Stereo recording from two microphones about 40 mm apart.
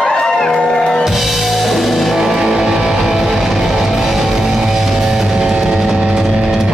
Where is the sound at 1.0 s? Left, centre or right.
Centre.